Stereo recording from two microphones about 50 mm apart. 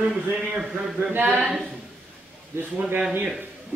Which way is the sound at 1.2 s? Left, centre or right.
Right.